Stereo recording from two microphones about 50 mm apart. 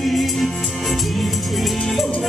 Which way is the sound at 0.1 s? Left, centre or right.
Centre.